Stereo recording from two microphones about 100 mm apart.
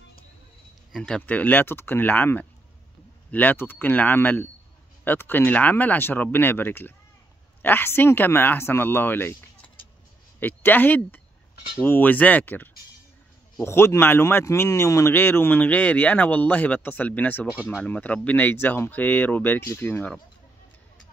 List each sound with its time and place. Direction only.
0.9 s speech: 5° left (ahead or behind)
10.4 s speech: 20° left (ahead or behind)